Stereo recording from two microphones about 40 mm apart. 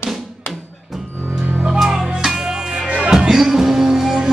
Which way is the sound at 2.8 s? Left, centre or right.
Right.